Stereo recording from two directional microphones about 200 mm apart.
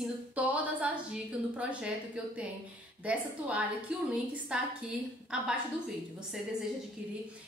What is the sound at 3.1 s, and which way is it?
A woman's voice, 5° right (ahead or behind).